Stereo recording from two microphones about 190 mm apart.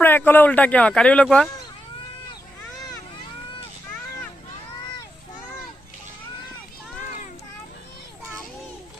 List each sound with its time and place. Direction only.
0.0 s speech: 10° left (ahead or behind)